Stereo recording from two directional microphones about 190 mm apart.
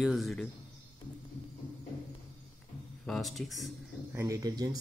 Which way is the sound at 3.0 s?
Centre (ahead or behind).